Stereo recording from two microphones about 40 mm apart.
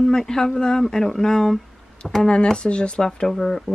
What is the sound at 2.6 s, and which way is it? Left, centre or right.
Speech, left.